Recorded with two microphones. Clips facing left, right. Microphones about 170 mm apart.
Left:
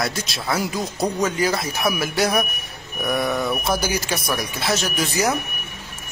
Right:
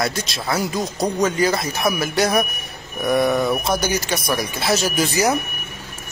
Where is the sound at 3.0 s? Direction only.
20° right (ahead or behind).